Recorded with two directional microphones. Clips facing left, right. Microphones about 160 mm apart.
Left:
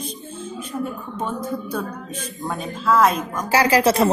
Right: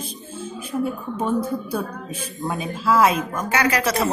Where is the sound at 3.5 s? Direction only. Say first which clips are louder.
Left 5 dB; 30° left (ahead or behind).